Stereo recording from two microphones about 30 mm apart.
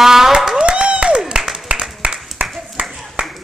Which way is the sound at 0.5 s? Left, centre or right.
Right.